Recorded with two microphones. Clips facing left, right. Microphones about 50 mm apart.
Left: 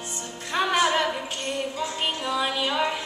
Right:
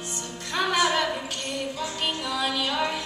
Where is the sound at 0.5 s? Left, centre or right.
Centre.